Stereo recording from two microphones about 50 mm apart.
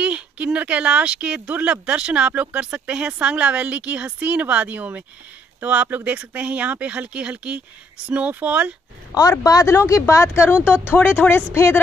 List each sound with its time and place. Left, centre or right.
0.0 s a woman's voice: right
9.4 s speech: left